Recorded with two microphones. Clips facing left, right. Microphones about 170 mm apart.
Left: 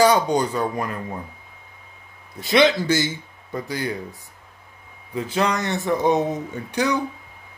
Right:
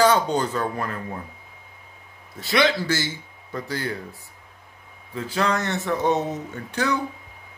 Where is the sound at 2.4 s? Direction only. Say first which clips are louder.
Left 4 dB; 20° left (ahead or behind).